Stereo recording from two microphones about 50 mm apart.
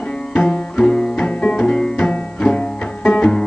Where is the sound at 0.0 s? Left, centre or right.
Left.